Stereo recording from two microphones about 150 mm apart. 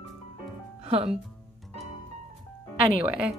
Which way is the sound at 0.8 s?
40° right (ahead or behind).